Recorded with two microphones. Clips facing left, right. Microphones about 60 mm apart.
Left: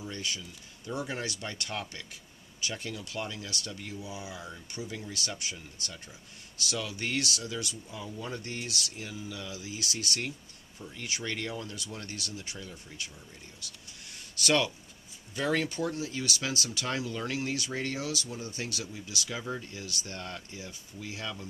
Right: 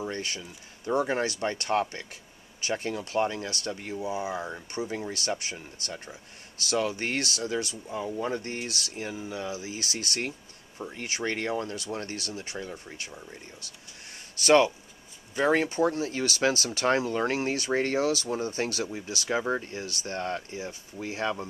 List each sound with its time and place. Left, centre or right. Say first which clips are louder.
0.0 s speech: right 4 dB; right